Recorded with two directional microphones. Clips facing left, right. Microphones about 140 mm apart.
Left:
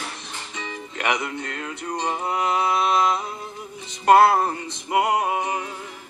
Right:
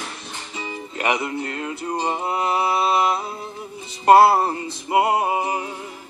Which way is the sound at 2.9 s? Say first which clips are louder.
Right 1 dB; 5° right (ahead or behind).